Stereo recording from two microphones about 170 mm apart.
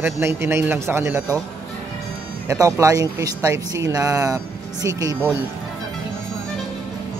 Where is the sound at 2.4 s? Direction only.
20° right (ahead or behind).